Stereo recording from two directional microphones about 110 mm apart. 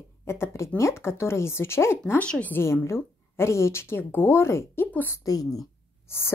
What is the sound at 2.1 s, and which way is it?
A woman's voice, 15° left (ahead or behind).